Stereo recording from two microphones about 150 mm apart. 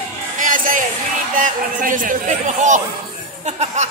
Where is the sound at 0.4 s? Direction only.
60° right (ahead or behind).